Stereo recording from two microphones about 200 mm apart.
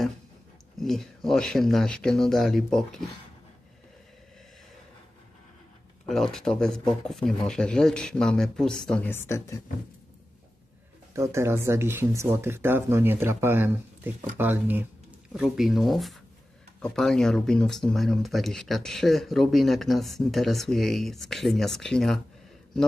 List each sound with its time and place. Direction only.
0.7 s speech: centre (ahead or behind)
6.0 s speech: centre (ahead or behind)
11.1 s speech: 15° right (ahead or behind); by 22.2 s 5° left (ahead or behind)